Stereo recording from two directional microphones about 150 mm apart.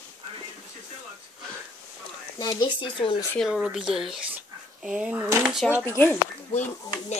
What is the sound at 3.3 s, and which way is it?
Speech, centre (ahead or behind).